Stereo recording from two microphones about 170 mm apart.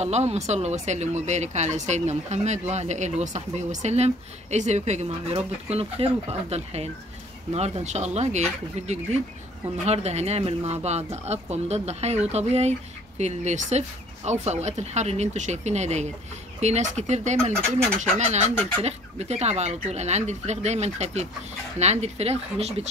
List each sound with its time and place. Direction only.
0.0 s speech: 40° right (ahead or behind)